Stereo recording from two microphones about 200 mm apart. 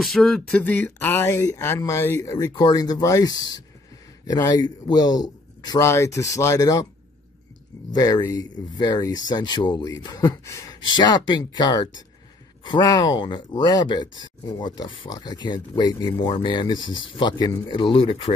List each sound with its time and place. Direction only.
0.0 s speech: centre (ahead or behind)
7.9 s speech: 20° left (ahead or behind)